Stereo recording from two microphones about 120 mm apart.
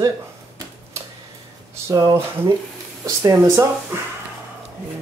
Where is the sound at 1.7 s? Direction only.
30° right (ahead or behind).